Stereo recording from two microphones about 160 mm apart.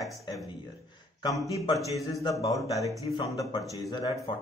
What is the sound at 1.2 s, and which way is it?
Speech, 25° left (ahead or behind).